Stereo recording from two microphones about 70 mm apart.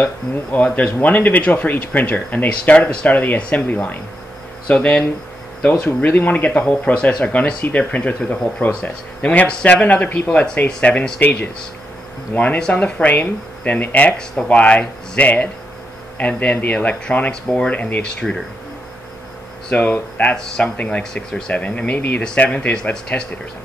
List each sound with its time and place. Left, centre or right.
0.0 s speech: left
19.7 s speech: left
20.3 s speech: centre